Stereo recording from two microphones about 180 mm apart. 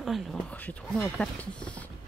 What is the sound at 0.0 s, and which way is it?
Speech, centre (ahead or behind).